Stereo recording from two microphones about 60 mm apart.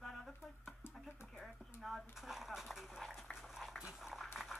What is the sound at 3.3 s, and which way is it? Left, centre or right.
Dog, centre.